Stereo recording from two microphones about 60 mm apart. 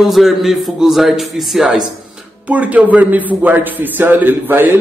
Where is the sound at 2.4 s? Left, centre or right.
Right.